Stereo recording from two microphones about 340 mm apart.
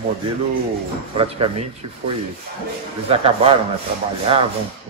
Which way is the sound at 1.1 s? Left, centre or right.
Centre.